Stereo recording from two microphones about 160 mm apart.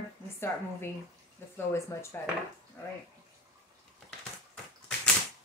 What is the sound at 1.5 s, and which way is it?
Speech, 15° left (ahead or behind).